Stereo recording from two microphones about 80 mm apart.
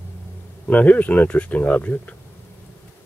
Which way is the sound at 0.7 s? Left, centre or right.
Centre.